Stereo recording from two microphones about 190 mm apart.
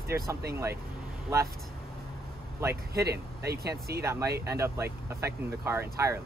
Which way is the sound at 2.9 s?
55° right (ahead or behind).